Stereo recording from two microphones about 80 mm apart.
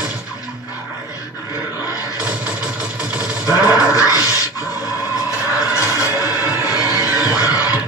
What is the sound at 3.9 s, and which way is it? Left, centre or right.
Dog, left.